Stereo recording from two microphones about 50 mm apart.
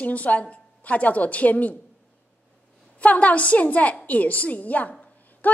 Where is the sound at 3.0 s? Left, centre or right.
Left.